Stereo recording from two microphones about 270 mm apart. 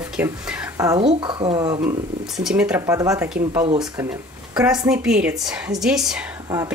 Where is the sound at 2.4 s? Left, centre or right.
Centre.